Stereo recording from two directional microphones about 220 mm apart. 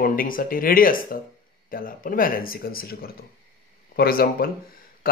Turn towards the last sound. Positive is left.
turn(degrees=40)  # may be behind; listen again after turning